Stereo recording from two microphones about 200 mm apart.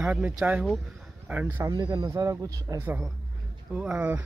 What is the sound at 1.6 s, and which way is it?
Speech, 20° right (ahead or behind).